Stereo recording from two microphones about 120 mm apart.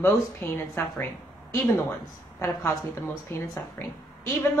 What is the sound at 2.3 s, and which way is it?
A woman's voice, 20° left (ahead or behind).